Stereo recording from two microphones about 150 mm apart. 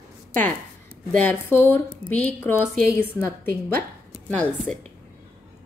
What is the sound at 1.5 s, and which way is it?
A woman's voice, 15° left (ahead or behind).